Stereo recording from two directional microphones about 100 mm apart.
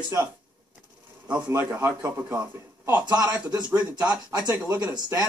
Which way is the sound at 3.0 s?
40° right (ahead or behind).